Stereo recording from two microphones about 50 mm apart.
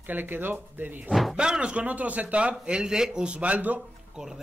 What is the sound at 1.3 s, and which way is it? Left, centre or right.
Speech, centre.